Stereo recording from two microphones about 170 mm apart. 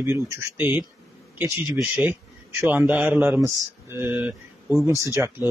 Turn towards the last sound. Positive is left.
turn(degrees=-15)  # may be behind; listen again after turning